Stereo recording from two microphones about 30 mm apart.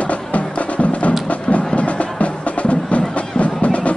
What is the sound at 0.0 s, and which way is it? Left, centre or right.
Music, left.